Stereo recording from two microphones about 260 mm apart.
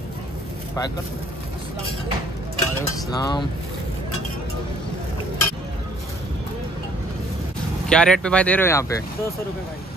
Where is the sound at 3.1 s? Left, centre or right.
Centre.